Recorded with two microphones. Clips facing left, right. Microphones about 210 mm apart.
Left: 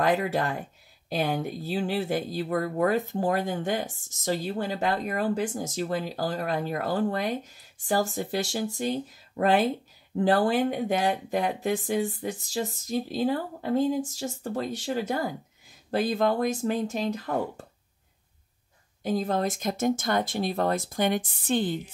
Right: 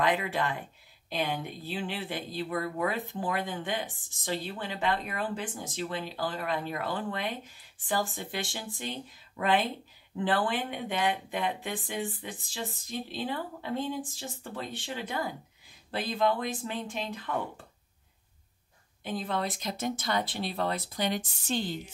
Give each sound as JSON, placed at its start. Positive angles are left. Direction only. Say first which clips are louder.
{"t": 0.0, "sound": "speech", "louder": "left 4 dB", "side_deg": 45}
{"t": 19.0, "sound": "speech", "louder": "left 6 dB", "side_deg": 40}